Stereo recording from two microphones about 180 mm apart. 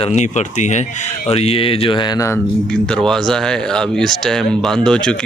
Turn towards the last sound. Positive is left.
turn(degrees=5)  # may be behind; listen again after turning